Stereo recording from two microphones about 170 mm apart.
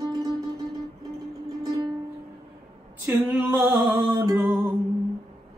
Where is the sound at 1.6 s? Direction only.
30° right (ahead or behind).